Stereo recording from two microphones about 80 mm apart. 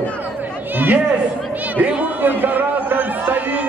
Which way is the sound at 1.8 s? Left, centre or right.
Right.